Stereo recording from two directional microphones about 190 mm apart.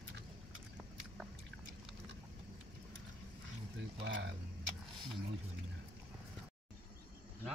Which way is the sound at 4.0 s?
70° right (ahead or behind).